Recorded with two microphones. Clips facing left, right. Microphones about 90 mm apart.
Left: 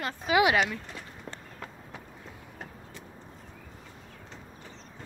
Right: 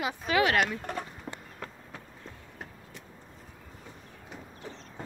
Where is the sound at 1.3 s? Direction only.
5° right (ahead or behind).